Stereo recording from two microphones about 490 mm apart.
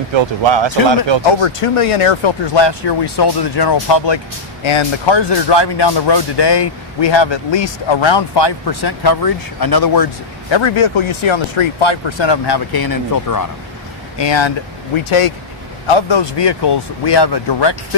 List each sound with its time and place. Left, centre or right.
0.1 s speech: right
1.4 s speech: left
10.5 s speech: left
14.1 s speech: left
15.0 s speech: left
15.9 s speech: left